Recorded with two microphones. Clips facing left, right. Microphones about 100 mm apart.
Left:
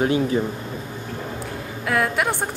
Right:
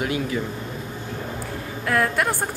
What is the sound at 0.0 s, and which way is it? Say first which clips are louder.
Speech: left 5 dB; 35° left (ahead or behind).